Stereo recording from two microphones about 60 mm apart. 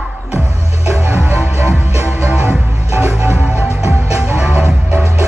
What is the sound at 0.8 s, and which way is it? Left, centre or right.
Music, right.